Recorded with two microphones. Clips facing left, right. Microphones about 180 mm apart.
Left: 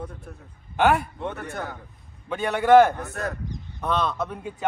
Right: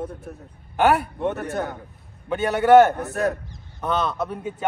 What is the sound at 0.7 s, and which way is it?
Speech, centre (ahead or behind).